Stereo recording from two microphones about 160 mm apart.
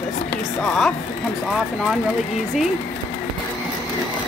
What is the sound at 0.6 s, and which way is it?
Speech, centre (ahead or behind).